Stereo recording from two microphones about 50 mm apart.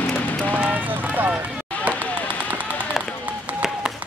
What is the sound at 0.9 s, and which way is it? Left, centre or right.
Run, right.